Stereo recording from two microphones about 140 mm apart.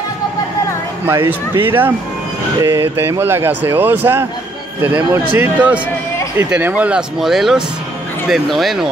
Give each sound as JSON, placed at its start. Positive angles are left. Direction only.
{"t": 1.0, "sound": "speech", "side_deg": -15}
{"t": 5.3, "sound": "speech", "side_deg": -15}